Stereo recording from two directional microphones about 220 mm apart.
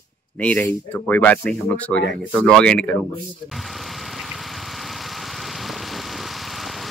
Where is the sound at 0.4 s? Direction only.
5° left (ahead or behind).